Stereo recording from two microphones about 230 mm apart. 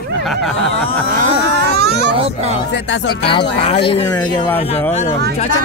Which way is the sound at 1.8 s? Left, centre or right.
Right.